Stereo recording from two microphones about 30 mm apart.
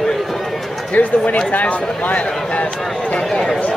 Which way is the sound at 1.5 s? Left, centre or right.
Left.